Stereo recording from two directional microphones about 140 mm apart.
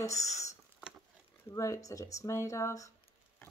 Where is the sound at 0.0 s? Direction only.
20° left (ahead or behind).